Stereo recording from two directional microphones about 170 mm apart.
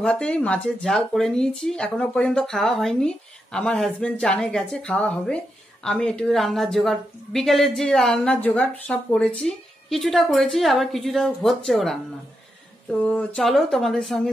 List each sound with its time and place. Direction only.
0.0 s a woman's voice: 5° left (ahead or behind)